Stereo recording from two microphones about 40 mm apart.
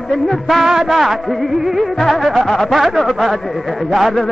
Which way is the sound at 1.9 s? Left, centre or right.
Centre.